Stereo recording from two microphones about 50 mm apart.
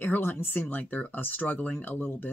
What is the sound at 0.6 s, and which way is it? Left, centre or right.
Speech, left.